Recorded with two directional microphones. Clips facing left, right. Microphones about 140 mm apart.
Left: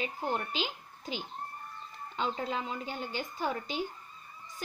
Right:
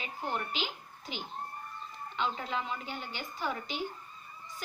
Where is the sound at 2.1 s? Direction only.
35° left (ahead or behind).